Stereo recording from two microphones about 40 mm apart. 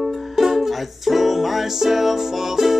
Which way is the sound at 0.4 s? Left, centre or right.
Centre.